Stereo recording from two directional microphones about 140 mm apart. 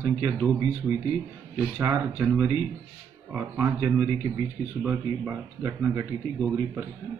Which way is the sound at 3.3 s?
20° right (ahead or behind).